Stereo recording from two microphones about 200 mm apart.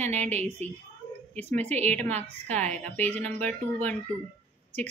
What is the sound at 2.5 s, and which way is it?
Speech, 5° left (ahead or behind).